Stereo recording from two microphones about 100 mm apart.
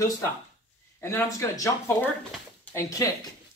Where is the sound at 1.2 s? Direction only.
35° left (ahead or behind).